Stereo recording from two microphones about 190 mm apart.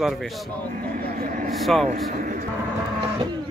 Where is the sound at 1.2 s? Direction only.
45° right (ahead or behind).